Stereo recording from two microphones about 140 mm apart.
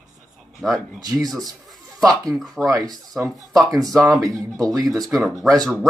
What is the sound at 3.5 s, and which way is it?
A man's voice, centre (ahead or behind).